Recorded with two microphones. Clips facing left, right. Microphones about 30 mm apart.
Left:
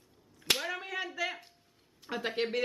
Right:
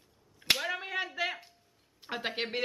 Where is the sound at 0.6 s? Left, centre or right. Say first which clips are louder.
Right 2 dB; centre.